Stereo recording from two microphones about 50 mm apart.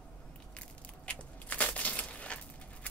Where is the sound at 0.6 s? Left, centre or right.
Left.